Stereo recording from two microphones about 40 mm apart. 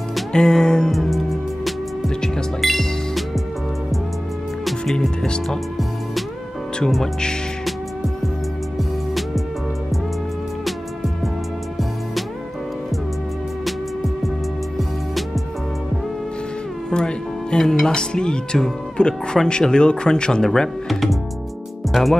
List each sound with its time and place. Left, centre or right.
0.3 s music: centre
1.1 s music: centre
2.2 s music: centre
4.9 s music: centre
7.0 s speech: centre
16.9 s music: centre
17.6 s speech: centre
21.9 s music: centre